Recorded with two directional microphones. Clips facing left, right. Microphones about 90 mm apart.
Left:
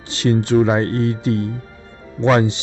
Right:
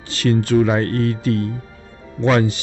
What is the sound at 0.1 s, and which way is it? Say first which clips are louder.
Speech: left 1 dB; 20° left (ahead or behind).